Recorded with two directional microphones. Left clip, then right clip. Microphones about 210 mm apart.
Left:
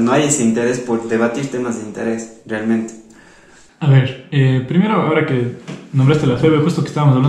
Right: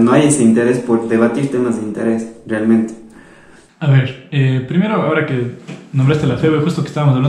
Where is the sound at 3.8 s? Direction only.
Centre (ahead or behind).